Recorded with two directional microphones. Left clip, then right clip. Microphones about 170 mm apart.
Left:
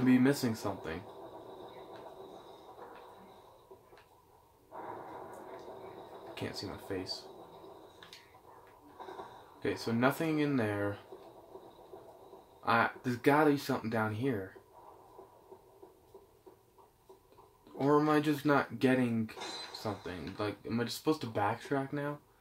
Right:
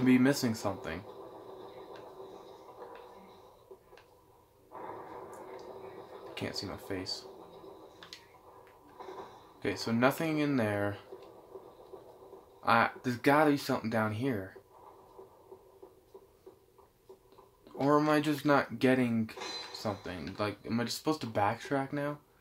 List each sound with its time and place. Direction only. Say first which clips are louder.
0.0 s speech: right 1 dB; 30° right (ahead or behind)
6.3 s speech: right 3 dB; 30° right (ahead or behind)
9.6 s speech: right 2 dB; 30° right (ahead or behind)
12.6 s speech: right 2 dB; 30° right (ahead or behind)
17.7 s speech: right 1 dB; 25° right (ahead or behind)